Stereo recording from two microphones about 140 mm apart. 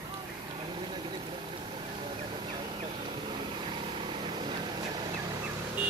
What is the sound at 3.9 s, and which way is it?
Vehicle, 35° right (ahead or behind).